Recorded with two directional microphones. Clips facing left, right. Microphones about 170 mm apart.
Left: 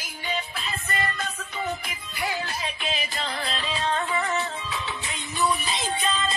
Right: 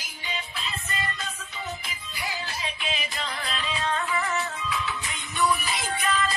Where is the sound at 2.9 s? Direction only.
35° left (ahead or behind).